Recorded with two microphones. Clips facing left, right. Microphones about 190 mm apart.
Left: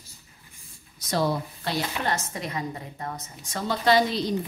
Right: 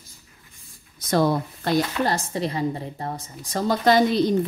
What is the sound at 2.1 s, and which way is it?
A woman's voice, 30° right (ahead or behind).